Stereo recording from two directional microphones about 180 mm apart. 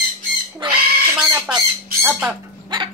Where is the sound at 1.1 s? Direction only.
10° right (ahead or behind).